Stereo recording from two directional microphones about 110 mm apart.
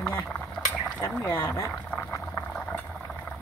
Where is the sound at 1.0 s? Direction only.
25° left (ahead or behind).